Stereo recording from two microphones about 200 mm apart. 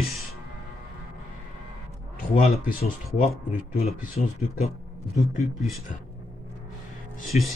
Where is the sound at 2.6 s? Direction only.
45° left (ahead or behind).